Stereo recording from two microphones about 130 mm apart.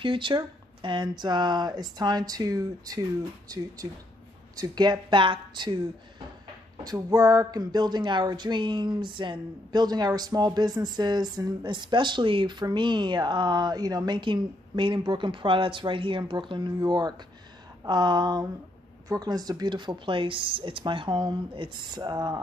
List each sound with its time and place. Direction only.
0.0 s speech: 40° right (ahead or behind)